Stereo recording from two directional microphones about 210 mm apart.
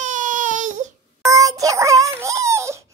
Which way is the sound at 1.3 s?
15° right (ahead or behind).